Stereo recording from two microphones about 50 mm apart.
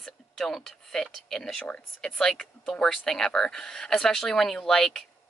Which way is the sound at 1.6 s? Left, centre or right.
Left.